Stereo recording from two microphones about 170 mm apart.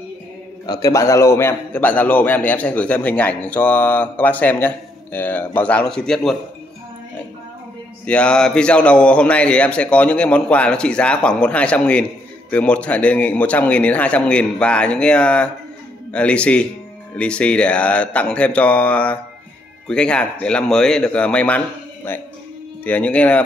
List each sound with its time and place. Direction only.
0.7 s a man's voice: 20° left (ahead or behind); by 6.3 s 5° left (ahead or behind)
8.0 s a man's voice: 5° left (ahead or behind)